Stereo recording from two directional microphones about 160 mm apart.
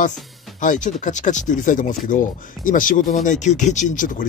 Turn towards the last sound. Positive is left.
turn(degrees=55)  # may be behind; listen again after turning